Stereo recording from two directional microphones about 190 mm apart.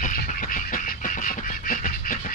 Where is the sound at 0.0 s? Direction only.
45° left (ahead or behind).